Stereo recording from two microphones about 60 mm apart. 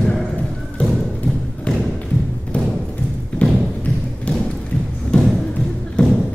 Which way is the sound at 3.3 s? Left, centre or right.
Left.